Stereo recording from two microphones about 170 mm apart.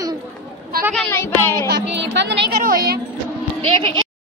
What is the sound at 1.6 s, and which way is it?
Speech, 90° right.